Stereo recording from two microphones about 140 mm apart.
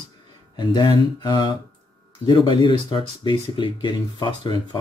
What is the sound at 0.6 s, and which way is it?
Speech, 30° left (ahead or behind).